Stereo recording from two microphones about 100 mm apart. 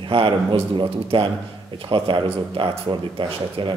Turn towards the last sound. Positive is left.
turn(degrees=-55)  # may be behind; listen again after turning